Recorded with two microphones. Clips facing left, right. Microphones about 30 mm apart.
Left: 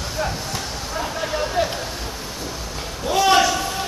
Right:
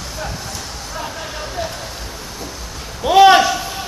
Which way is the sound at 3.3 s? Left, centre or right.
Centre.